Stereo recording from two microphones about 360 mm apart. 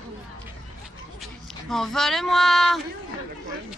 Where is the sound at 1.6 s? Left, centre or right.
Centre.